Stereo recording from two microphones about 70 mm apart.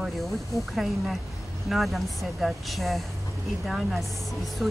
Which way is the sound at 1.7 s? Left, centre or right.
Centre.